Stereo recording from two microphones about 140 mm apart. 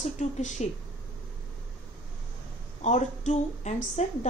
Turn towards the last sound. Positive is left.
turn(degrees=55)  # may be behind; listen again after turning